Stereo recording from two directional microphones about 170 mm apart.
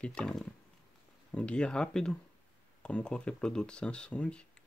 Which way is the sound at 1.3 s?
5° left (ahead or behind).